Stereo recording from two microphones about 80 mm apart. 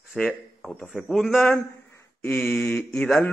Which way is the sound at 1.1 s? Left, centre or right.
Centre.